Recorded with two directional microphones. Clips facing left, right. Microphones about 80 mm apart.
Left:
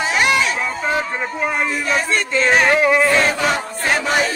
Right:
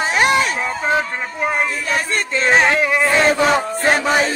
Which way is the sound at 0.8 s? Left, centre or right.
Right.